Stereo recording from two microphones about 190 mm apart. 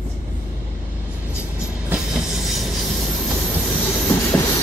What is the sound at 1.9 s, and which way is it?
Train, 5° right (ahead or behind).